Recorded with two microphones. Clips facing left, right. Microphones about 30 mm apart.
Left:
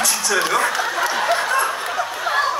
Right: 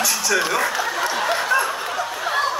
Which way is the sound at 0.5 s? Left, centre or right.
Left.